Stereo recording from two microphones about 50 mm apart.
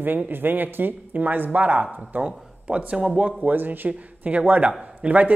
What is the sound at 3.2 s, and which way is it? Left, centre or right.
A man's voice, right.